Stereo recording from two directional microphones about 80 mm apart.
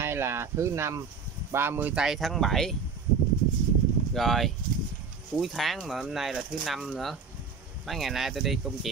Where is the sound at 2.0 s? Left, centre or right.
Centre.